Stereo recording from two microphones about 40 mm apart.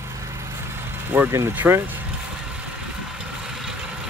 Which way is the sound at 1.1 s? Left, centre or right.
Right.